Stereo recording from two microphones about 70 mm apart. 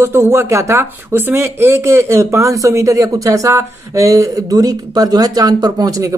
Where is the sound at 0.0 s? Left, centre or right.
Right.